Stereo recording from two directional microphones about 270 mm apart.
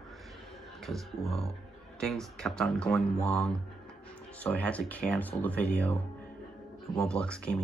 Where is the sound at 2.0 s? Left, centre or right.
Centre.